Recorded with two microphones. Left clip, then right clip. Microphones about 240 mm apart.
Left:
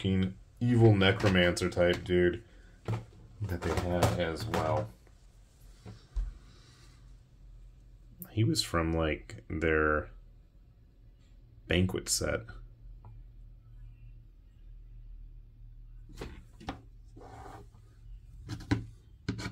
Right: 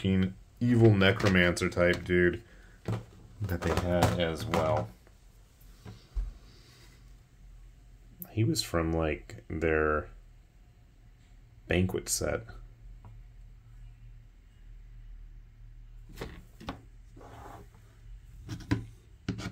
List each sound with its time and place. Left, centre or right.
0.0 s speech: centre
8.2 s speech: centre
11.6 s speech: centre